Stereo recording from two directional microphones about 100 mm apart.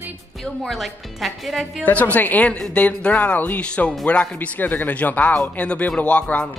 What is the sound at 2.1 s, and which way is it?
A man's voice, 15° left (ahead or behind).